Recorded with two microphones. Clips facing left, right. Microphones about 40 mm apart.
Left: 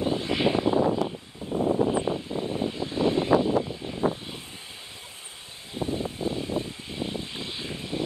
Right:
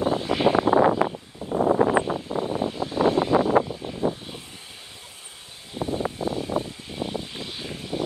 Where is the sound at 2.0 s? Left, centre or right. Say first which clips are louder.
Right 2 dB; right.